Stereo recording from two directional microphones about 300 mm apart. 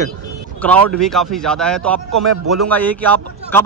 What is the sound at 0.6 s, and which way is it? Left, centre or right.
A man's voice, centre.